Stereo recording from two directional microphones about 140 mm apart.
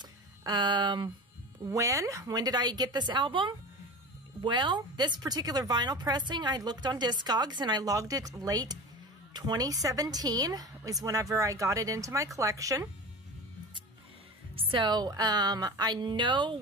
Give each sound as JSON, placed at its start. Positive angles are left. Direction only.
{"t": 0.0, "sound": "music", "side_deg": -30}
{"t": 1.6, "sound": "a woman's voice", "side_deg": -25}
{"t": 14.5, "sound": "speech", "side_deg": -40}